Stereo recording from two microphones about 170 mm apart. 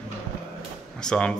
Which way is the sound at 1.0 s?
5° left (ahead or behind).